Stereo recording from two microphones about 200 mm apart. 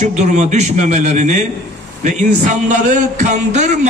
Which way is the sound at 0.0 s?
35° right (ahead or behind).